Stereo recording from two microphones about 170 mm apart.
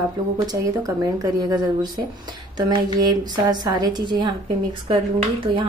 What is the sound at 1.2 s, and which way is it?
A woman's voice, 25° right (ahead or behind).